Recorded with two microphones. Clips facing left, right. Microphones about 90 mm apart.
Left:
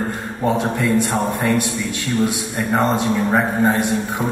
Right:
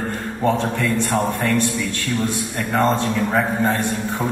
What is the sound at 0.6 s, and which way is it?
A man's voice, 15° left (ahead or behind).